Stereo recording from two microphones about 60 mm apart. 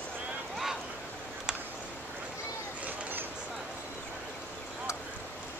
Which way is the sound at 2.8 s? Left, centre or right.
Right.